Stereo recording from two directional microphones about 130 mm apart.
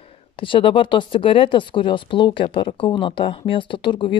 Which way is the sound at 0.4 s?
40° left (ahead or behind).